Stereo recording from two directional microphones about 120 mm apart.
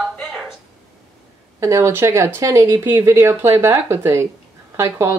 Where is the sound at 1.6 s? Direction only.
25° right (ahead or behind).